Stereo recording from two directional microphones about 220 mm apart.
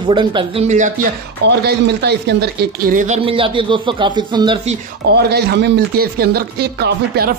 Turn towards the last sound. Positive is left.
turn(degrees=-45)  # may be behind; listen again after turning